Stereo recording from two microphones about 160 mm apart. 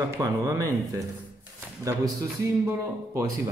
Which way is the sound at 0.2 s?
20° right (ahead or behind).